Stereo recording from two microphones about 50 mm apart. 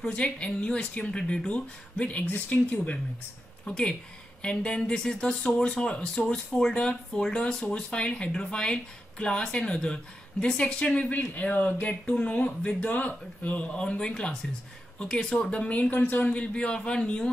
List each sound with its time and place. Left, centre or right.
0.0 s speech: centre
2.2 s speech: left
3.6 s speech: centre
6.7 s speech: left
11.1 s speech: left; by 15.3 s centre
15.7 s speech: left
16.2 s speech: left